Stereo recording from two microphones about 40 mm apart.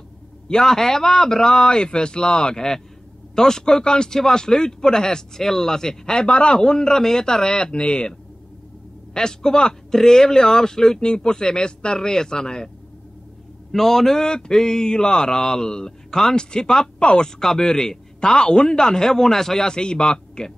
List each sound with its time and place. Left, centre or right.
0.5 s speech: centre
17.0 s a man's voice: left
17.4 s speech: centre
19.7 s a man's voice: left